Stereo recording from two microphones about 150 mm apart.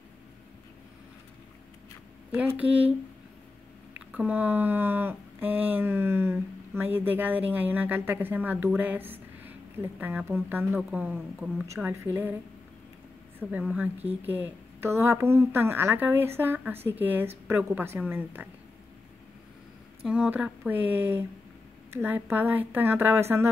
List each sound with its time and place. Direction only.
2.3 s speech: 10° right (ahead or behind)
4.1 s speech: 10° right (ahead or behind)
11.6 s speech: 20° right (ahead or behind)
13.4 s speech: 10° right (ahead or behind)
20.0 s speech: 5° right (ahead or behind)